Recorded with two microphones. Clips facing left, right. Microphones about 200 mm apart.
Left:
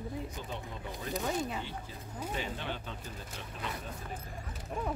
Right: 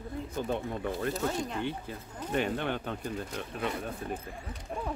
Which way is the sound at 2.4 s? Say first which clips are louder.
Right 11 dB; 55° right (ahead or behind).